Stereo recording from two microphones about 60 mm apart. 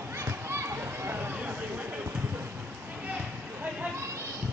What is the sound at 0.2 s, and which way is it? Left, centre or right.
Children playing, right.